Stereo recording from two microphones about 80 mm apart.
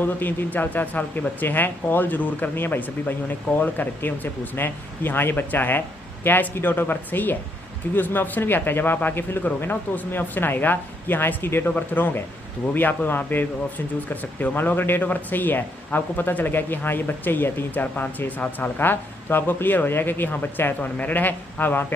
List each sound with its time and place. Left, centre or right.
0.0 s speech: left